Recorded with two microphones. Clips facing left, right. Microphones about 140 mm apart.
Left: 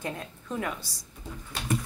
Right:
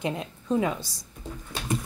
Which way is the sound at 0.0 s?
20° right (ahead or behind).